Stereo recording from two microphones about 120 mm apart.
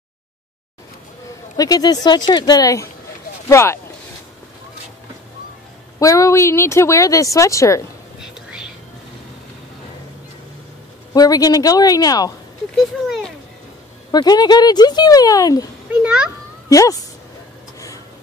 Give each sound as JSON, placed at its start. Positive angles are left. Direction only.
{"t": 1.6, "sound": "speech", "side_deg": 35}
{"t": 5.9, "sound": "speech", "side_deg": 25}
{"t": 8.2, "sound": "whispering", "side_deg": -5}
{"t": 11.1, "sound": "speech", "side_deg": 30}
{"t": 14.1, "sound": "speech", "side_deg": 35}
{"t": 15.9, "sound": "a child's voice", "side_deg": -10}
{"t": 16.6, "sound": "speech", "side_deg": 30}
{"t": 17.7, "sound": "a sound", "side_deg": 30}